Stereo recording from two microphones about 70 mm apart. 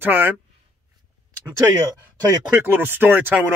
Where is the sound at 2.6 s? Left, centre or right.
Right.